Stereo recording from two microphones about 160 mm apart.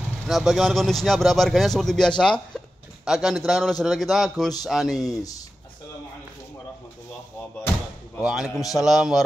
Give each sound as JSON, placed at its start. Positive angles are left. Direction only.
{"t": 0.3, "sound": "speech", "side_deg": 0}
{"t": 5.0, "sound": "speech", "side_deg": 20}
{"t": 8.2, "sound": "speech", "side_deg": -5}